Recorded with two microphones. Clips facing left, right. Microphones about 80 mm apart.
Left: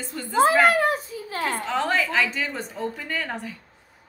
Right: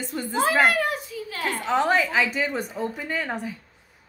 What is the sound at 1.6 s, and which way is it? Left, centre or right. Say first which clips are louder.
A woman's voice: right 5 dB; centre.